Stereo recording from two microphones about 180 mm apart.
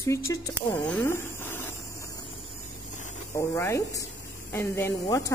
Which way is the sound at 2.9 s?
45° left (ahead or behind).